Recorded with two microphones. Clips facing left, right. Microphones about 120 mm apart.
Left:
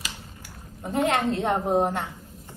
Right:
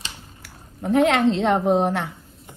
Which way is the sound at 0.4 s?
75° right (ahead or behind).